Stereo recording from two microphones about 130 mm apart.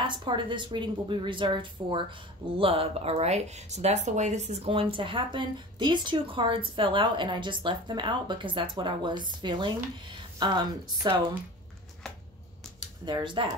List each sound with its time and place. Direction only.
0.0 s speech: 35° right (ahead or behind)
13.0 s speech: 35° right (ahead or behind)